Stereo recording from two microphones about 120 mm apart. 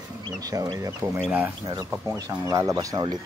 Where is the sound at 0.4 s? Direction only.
30° right (ahead or behind).